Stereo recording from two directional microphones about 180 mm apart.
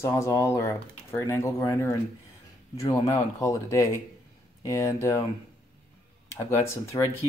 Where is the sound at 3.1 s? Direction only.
15° left (ahead or behind).